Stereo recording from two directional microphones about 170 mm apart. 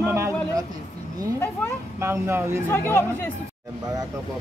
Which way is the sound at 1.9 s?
15° right (ahead or behind).